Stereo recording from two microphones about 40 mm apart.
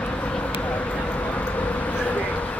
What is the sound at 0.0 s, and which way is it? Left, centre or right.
Vehicle, left.